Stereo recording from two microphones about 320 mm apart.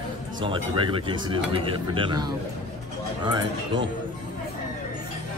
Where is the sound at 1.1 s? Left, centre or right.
Centre.